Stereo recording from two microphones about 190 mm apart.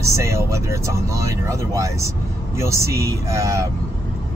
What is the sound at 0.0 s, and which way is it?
Speech, 15° right (ahead or behind).